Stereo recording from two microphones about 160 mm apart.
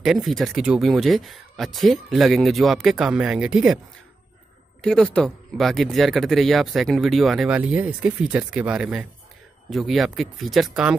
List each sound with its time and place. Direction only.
0.0 s speech: centre (ahead or behind)
4.8 s speech: 5° left (ahead or behind)